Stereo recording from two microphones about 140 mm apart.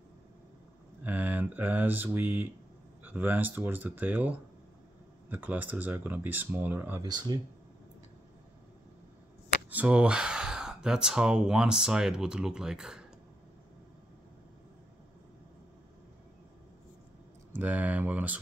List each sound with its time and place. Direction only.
1.0 s mantra: 10° right (ahead or behind)
3.0 s speech: 10° right (ahead or behind)
7.0 s speech: 30° right (ahead or behind)
9.7 s speech: 10° right (ahead or behind)
17.6 s speech: 10° right (ahead or behind)